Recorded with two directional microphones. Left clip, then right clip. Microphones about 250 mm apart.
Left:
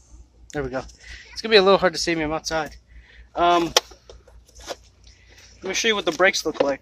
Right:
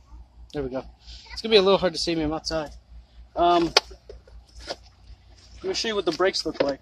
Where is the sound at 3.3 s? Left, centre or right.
Left.